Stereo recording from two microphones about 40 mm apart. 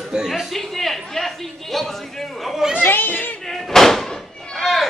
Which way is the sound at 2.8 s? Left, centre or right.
Left.